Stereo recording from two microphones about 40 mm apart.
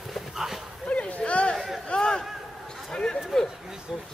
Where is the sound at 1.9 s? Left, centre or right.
Centre.